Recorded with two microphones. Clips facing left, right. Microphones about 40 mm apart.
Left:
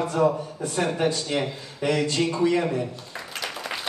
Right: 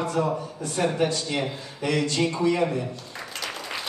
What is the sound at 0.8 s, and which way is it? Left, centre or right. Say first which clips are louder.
A woman's voice: even; centre.